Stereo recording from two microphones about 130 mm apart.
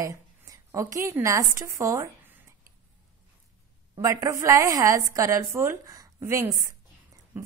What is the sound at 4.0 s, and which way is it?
A woman's voice, 25° right (ahead or behind).